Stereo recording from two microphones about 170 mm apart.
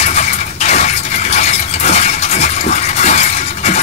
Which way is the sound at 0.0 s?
40° left (ahead or behind).